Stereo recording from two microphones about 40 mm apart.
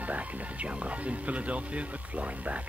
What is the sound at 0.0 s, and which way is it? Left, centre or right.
Speech, right.